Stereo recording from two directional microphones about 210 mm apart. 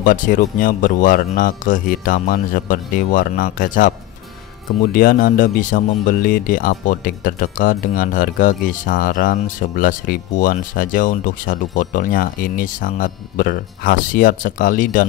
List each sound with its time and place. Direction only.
0.0 s speech: 40° left (ahead or behind)
4.9 s speech: 40° left (ahead or behind)